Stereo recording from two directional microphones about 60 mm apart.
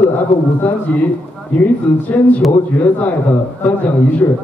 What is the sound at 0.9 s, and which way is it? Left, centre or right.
A man's voice, left.